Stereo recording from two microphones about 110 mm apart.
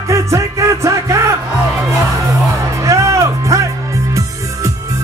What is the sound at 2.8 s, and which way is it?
Music, 30° right (ahead or behind).